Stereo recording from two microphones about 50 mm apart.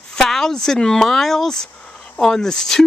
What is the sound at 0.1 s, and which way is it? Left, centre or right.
Speech, centre.